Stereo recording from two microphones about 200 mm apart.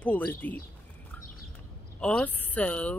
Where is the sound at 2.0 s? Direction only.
5° left (ahead or behind).